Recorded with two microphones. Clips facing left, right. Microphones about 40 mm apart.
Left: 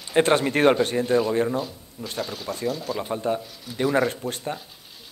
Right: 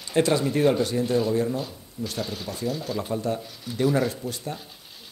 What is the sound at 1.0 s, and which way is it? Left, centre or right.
Speech, left.